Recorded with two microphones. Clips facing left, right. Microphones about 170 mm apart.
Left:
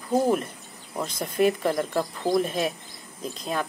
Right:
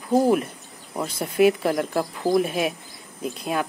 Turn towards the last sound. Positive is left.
turn(degrees=-10)  # may be behind; listen again after turning